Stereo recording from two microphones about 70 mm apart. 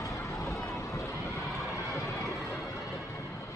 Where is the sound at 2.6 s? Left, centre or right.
Left.